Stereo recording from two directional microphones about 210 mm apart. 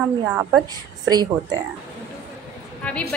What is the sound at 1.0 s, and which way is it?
Speech, 20° right (ahead or behind).